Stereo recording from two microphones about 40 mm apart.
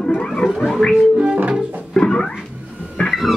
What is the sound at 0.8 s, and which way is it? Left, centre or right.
Music, centre.